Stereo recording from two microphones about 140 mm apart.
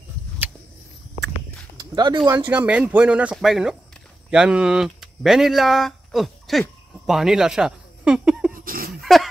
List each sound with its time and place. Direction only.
1.8 s speech: 30° right (ahead or behind)
2.3 s a man's voice: 15° right (ahead or behind)
8.5 s a sound: 90° right
9.0 s dog: centre (ahead or behind)